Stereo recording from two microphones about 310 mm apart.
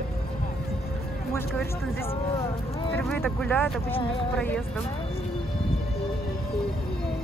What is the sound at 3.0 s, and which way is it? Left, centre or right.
Speech, centre.